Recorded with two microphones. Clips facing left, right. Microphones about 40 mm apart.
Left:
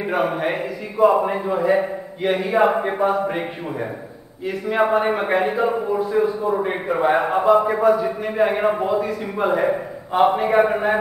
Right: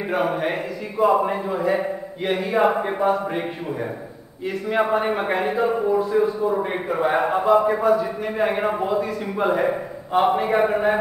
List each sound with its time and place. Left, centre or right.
0.0 s a man's voice: centre
4.5 s a man's voice: centre